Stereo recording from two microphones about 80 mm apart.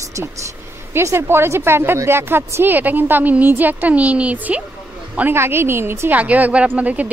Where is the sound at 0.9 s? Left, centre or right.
Right.